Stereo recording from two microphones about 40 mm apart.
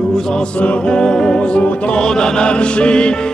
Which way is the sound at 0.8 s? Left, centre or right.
Centre.